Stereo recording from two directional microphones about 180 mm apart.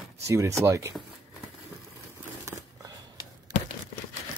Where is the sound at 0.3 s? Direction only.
15° right (ahead or behind).